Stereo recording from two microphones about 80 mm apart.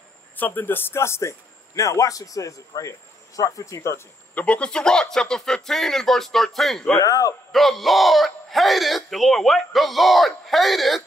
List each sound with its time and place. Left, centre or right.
0.4 s speech: left
1.8 s a man's voice: left
4.4 s speech: centre
7.0 s a man's voice: left
7.5 s speech: centre